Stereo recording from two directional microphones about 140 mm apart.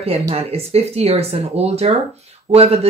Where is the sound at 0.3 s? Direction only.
45° right (ahead or behind).